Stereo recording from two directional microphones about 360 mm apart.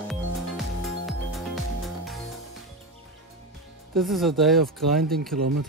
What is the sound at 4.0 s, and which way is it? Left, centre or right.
Speech, centre.